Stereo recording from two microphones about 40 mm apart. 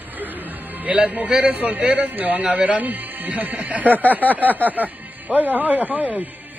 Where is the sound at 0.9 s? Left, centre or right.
Right.